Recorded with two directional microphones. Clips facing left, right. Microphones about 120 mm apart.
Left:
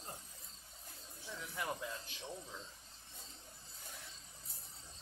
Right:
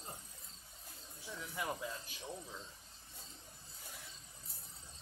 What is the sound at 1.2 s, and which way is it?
Snake, 5° right (ahead or behind).